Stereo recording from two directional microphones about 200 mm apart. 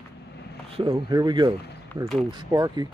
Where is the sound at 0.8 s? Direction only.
25° right (ahead or behind).